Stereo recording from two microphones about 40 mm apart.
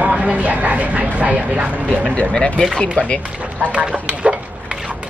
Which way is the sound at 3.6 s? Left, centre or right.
Right.